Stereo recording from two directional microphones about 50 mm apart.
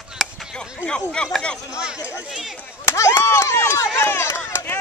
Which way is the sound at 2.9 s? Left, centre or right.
Left.